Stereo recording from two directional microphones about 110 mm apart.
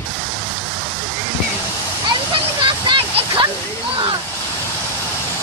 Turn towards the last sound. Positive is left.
turn(degrees=-45)  # may be behind; listen again after turning